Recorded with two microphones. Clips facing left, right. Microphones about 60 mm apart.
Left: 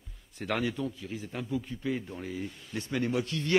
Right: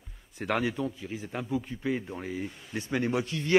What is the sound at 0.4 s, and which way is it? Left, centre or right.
Speech, centre.